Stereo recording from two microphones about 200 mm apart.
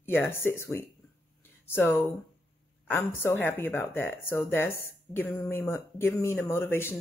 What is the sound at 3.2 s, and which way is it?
Speech, 10° left (ahead or behind).